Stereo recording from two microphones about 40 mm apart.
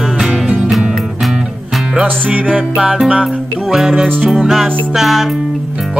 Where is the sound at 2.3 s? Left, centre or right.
Right.